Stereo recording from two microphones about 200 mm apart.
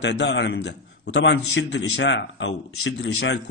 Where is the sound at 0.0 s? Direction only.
65° left (ahead or behind).